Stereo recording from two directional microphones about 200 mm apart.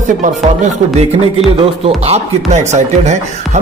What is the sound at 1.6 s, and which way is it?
Speech, 30° right (ahead or behind).